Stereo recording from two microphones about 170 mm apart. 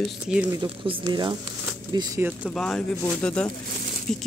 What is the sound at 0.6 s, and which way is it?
Speech, 25° right (ahead or behind).